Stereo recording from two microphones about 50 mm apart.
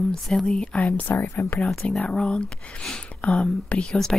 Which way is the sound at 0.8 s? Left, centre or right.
Left.